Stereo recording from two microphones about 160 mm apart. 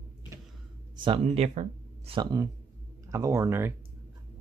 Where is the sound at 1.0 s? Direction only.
35° right (ahead or behind).